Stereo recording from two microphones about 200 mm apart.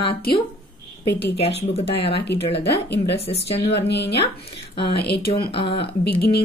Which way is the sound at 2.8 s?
60° left (ahead or behind).